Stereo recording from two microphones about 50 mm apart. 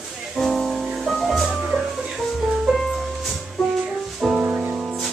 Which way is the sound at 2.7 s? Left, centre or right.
Centre.